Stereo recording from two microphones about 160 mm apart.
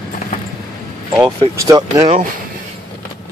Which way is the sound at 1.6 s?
25° right (ahead or behind).